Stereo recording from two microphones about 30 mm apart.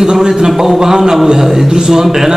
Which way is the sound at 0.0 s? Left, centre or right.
Right.